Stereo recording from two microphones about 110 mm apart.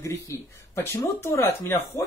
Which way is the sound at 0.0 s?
25° left (ahead or behind).